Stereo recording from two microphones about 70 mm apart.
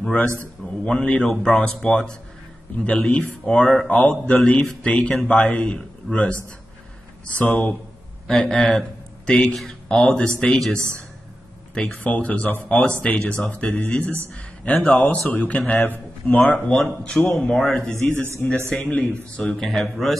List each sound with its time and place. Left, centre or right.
0.8 s speech: centre
7.3 s speech: left
8.3 s speech: centre
16.5 s speech: centre
18.1 s speech: right
18.7 s speech: centre
19.5 s speech: centre